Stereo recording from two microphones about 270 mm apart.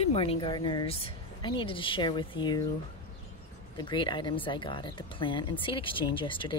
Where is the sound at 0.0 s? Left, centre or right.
Left.